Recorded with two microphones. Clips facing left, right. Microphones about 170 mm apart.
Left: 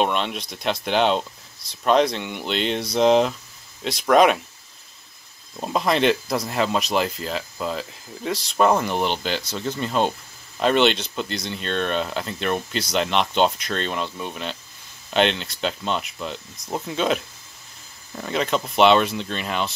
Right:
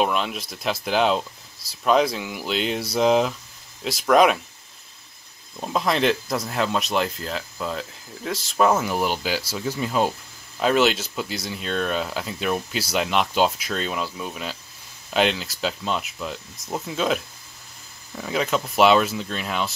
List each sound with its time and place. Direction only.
0.0 s speech: centre (ahead or behind)
5.6 s speech: centre (ahead or behind)